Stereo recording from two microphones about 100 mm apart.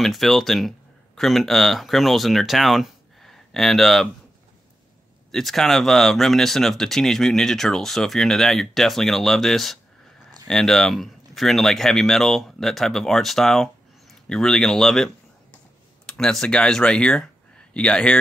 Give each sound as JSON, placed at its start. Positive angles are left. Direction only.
{"t": 0.0, "sound": "speech", "side_deg": 0}
{"t": 5.3, "sound": "speech", "side_deg": 0}
{"t": 16.1, "sound": "speech", "side_deg": 5}